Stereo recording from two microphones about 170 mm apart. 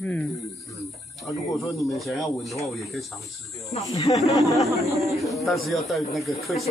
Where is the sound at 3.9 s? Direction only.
20° left (ahead or behind).